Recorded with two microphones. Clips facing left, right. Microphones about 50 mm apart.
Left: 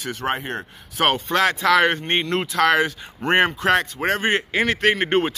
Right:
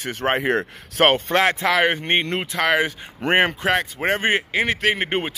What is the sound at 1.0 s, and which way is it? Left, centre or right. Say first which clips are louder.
Speech: right 2 dB; right.